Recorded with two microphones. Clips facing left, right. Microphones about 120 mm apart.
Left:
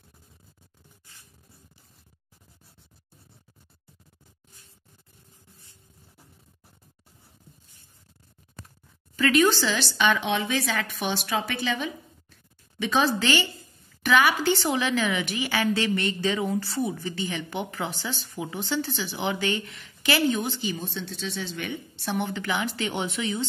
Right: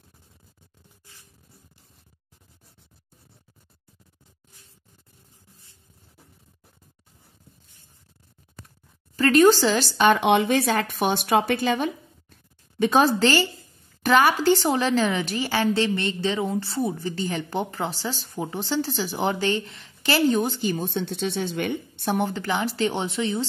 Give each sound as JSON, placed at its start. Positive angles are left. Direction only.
{"t": 9.1, "sound": "speech", "side_deg": -40}
{"t": 10.2, "sound": "a woman's voice", "side_deg": -60}
{"t": 16.8, "sound": "speech", "side_deg": -35}